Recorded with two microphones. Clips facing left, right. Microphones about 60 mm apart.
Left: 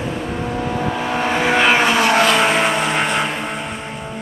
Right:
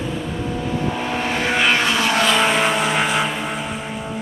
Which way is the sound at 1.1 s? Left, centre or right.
Centre.